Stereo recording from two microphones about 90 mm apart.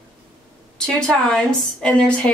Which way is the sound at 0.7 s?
5° left (ahead or behind).